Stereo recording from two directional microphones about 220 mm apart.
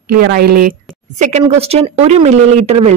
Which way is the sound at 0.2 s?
45° right (ahead or behind).